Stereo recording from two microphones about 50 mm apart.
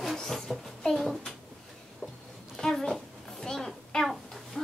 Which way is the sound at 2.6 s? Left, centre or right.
Centre.